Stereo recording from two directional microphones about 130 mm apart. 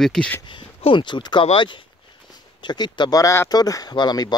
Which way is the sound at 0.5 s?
40° left (ahead or behind).